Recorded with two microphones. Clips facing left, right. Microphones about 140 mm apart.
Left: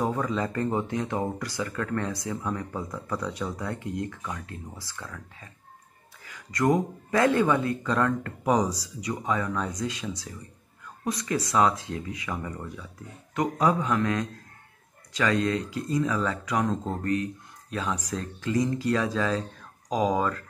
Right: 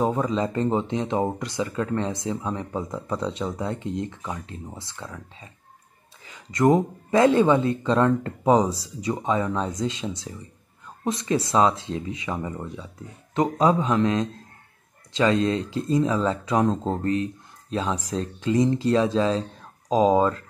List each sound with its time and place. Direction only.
0.0 s speech: 20° right (ahead or behind)